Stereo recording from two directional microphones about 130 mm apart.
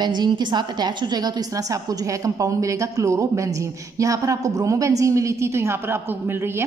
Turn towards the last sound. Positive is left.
turn(degrees=-20)  # may be behind; listen again after turning